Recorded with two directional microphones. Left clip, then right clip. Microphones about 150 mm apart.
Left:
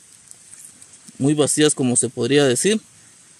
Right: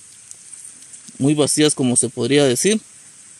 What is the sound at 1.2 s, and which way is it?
Speech, 15° right (ahead or behind).